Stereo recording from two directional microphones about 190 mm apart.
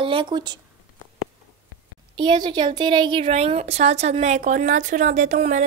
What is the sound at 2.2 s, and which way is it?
A woman's voice, 25° right (ahead or behind).